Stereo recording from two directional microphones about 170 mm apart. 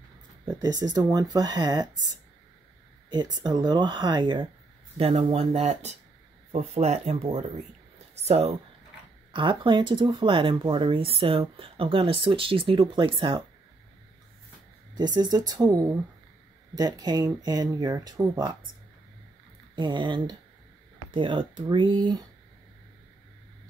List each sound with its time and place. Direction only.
0.5 s speech: 25° right (ahead or behind)
15.0 s speech: 25° right (ahead or behind)
19.7 s speech: 25° right (ahead or behind)